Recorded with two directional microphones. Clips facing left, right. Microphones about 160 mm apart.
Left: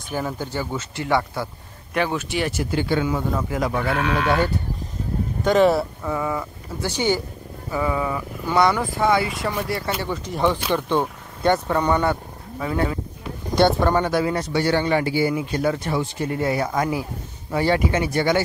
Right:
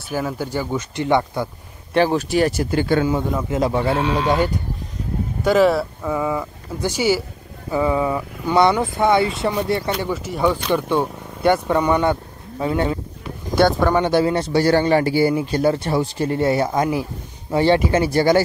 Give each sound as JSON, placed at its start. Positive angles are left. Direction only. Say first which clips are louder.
{"t": 0.1, "sound": "speech", "louder": "right 3 dB", "side_deg": -5}
{"t": 2.0, "sound": "speech", "louder": "right 6 dB", "side_deg": -35}
{"t": 3.4, "sound": "speech", "louder": "right 4 dB", "side_deg": -25}
{"t": 5.4, "sound": "speech", "louder": "right 1 dB", "side_deg": -5}
{"t": 6.1, "sound": "speech", "louder": "right 3 dB", "side_deg": -10}
{"t": 7.7, "sound": "speech", "louder": "right 4 dB", "side_deg": -20}
{"t": 10.0, "sound": "speech", "louder": "left 1 dB", "side_deg": -5}
{"t": 10.7, "sound": "speech", "louder": "right 2 dB", "side_deg": -10}
{"t": 14.0, "sound": "speech", "louder": "right 4 dB", "side_deg": -30}